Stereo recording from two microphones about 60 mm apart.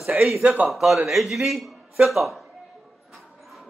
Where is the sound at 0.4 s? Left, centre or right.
Right.